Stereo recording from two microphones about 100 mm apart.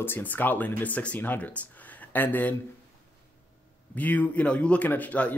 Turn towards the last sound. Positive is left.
turn(degrees=15)  # may be behind; listen again after turning